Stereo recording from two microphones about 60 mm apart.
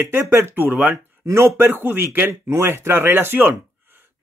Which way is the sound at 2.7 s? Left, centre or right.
Right.